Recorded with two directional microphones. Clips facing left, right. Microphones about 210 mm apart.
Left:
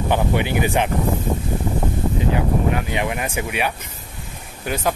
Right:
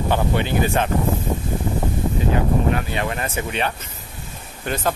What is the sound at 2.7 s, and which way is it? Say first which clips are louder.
Speech: left 1 dB; 15° left (ahead or behind).